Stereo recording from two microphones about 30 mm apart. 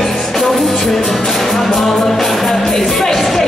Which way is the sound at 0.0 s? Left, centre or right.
Centre.